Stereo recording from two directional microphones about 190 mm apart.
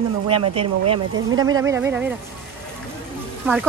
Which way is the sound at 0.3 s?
30° right (ahead or behind).